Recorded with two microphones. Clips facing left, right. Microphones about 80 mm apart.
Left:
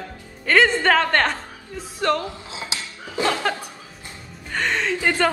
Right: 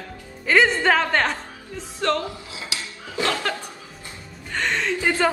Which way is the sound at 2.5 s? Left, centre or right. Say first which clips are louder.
Left 1 dB; left.